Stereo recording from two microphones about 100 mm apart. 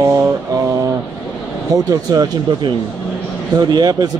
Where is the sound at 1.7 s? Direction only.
40° right (ahead or behind).